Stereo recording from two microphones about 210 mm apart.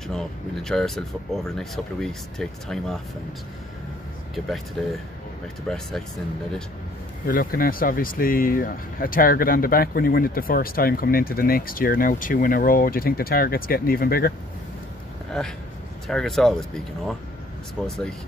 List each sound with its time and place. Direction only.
0.1 s speech: centre (ahead or behind)
5.7 s speech: centre (ahead or behind)
7.2 s speech: 45° left (ahead or behind)
15.3 s speech: centre (ahead or behind)